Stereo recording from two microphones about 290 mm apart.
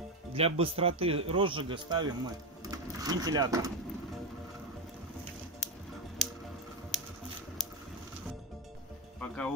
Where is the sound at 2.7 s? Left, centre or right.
Centre.